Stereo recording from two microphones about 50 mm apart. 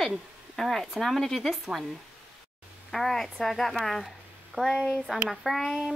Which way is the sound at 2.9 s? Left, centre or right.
Centre.